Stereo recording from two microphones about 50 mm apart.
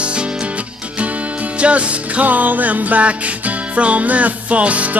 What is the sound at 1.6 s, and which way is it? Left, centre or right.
Music, right.